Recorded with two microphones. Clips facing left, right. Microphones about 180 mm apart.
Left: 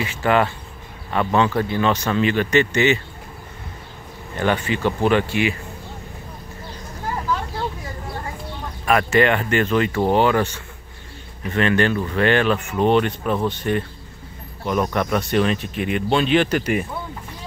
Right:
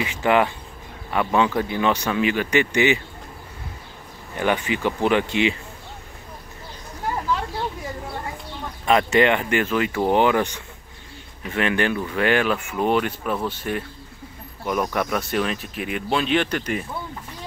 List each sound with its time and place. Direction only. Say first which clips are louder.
0.0 s speech: even; 15° right (ahead or behind)
4.4 s speech: left 1 dB; 15° right (ahead or behind)
8.8 s speech: even; 20° right (ahead or behind); by 16.8 s 10° left (ahead or behind)